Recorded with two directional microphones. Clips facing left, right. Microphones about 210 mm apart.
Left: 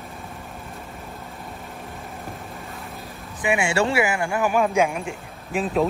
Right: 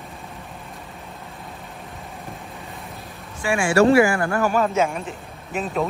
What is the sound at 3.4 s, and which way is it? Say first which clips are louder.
Speech: right 4 dB; 20° left (ahead or behind).